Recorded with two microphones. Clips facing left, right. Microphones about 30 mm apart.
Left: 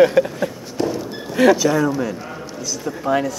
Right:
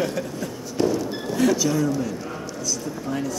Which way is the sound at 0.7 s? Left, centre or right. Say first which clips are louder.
Right 4 dB; centre.